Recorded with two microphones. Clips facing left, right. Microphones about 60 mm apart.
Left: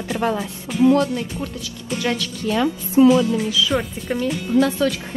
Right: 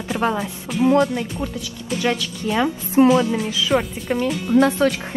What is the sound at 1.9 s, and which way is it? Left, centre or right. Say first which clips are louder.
Speech: right 1 dB; centre.